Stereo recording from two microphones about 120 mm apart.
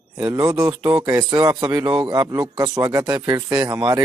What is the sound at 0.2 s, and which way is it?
A man's voice, 30° right (ahead or behind).